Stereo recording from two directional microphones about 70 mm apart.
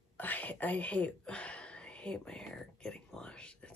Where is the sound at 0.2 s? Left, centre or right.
Left.